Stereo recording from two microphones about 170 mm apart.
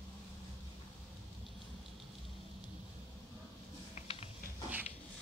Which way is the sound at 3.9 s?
35° left (ahead or behind).